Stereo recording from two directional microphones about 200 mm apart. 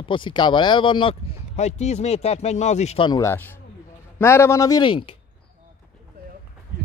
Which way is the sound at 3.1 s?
15° left (ahead or behind).